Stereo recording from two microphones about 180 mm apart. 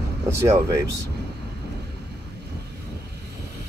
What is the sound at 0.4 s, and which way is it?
Speech, 15° right (ahead or behind).